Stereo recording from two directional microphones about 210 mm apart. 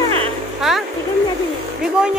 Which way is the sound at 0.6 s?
Centre (ahead or behind).